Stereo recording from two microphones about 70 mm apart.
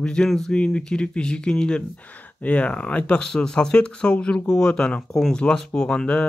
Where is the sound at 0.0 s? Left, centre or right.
Centre.